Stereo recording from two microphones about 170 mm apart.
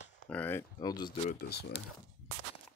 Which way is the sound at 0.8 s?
25° left (ahead or behind).